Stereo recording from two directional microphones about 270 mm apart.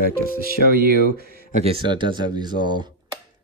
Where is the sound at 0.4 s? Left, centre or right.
Right.